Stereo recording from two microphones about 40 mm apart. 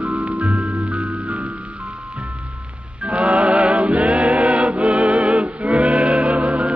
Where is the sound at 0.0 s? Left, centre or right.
Right.